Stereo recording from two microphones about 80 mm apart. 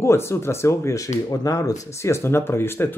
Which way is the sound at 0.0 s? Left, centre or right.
Left.